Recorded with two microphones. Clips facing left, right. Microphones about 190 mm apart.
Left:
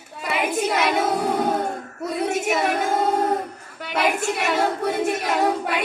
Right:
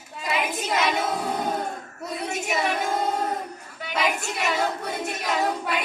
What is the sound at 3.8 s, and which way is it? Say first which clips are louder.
Speech: left 4 dB; 55° left (ahead or behind).